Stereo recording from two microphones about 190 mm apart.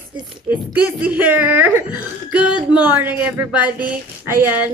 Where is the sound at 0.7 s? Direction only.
10° right (ahead or behind).